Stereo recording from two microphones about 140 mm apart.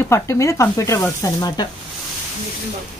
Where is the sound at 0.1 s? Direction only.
20° left (ahead or behind).